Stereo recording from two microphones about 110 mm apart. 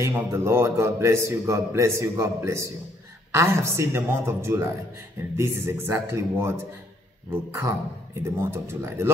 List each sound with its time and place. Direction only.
0.0 s a man's voice: 25° right (ahead or behind)